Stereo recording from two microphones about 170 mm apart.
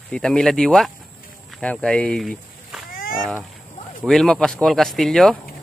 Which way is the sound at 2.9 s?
55° left (ahead or behind).